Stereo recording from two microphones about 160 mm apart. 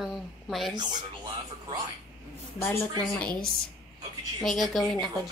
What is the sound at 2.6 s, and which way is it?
Speech, 15° left (ahead or behind).